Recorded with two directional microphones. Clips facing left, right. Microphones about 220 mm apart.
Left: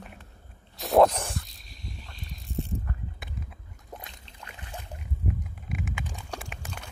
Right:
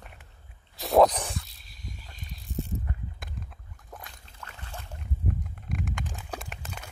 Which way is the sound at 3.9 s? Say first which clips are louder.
Left 2 dB; 20° left (ahead or behind).